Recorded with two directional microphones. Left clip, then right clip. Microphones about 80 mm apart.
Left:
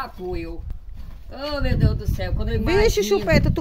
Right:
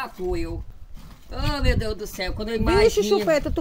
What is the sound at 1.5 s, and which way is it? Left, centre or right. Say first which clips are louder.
Speech: right 1 dB; left.